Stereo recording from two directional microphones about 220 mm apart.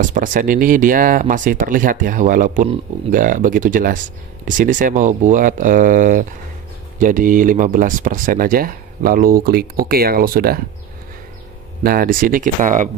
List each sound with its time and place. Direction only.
0.0 s speech: 35° right (ahead or behind)
11.8 s speech: 40° right (ahead or behind)